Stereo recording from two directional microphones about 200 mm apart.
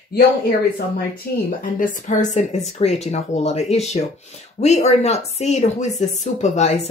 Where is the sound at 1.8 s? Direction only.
40° left (ahead or behind).